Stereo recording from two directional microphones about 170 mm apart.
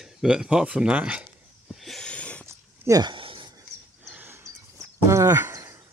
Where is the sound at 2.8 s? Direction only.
20° right (ahead or behind).